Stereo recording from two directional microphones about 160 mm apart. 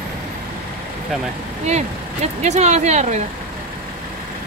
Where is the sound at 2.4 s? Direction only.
45° right (ahead or behind).